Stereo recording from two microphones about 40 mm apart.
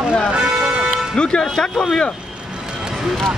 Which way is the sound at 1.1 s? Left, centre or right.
Left.